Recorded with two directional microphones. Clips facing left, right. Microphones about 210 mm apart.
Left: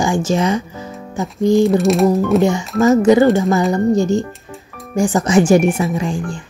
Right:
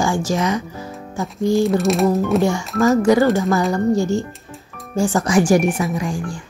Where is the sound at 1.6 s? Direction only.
Centre (ahead or behind).